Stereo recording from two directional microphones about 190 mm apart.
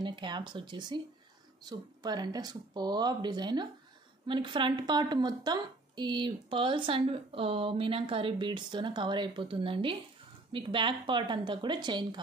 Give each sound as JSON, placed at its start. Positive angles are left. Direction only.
{"t": 0.0, "sound": "a woman's voice", "side_deg": -25}